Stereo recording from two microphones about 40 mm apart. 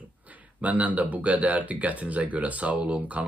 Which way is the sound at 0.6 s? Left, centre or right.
Right.